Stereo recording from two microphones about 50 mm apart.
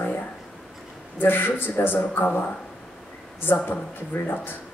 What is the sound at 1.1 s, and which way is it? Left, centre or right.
Speech, left.